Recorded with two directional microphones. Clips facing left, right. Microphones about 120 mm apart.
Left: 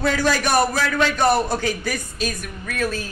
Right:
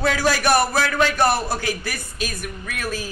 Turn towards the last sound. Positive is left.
turn(degrees=-5)  # may be behind; listen again after turning